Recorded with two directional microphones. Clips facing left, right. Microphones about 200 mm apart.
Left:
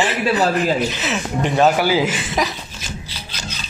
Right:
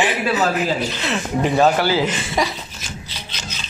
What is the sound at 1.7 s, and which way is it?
Speech, 10° left (ahead or behind).